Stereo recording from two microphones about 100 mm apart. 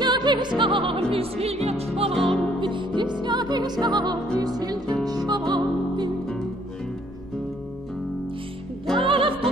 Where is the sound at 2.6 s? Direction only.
50° right (ahead or behind).